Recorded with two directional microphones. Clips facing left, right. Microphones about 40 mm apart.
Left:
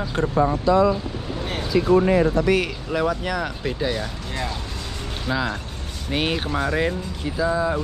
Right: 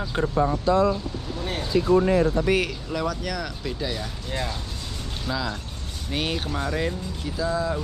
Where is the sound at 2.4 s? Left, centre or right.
Centre.